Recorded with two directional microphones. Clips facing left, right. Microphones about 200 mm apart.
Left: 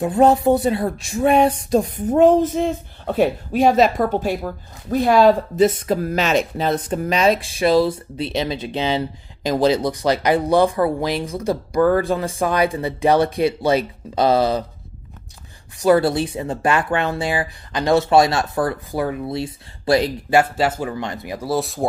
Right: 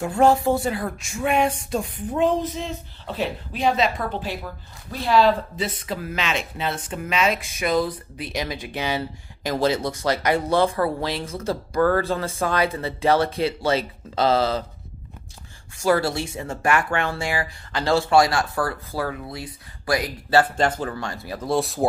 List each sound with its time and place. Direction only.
0.0 s speech: 20° left (ahead or behind)
15.8 s speech: 20° left (ahead or behind)
20.2 s speech: 10° left (ahead or behind)
21.5 s speech: centre (ahead or behind)